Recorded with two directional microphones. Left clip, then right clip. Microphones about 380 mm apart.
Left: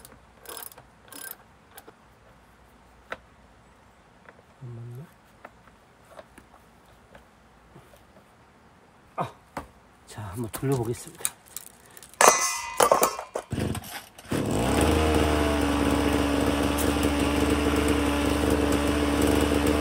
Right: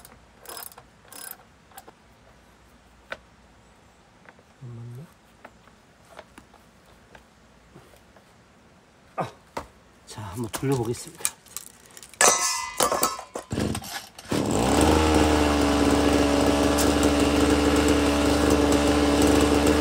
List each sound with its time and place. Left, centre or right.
9.1 s a sound: centre
10.0 s speech: centre
12.2 s clang: centre
13.5 s chainsaw: right